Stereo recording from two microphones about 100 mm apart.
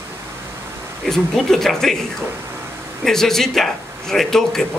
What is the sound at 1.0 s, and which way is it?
Speech, 5° left (ahead or behind).